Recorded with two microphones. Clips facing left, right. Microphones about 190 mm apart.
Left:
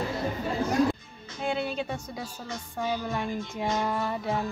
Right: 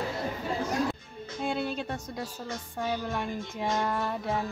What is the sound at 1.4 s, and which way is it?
Speech, centre (ahead or behind).